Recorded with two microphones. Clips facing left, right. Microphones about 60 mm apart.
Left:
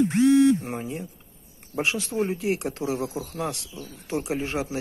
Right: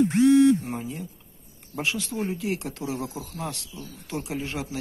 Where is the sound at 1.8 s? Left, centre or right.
Left.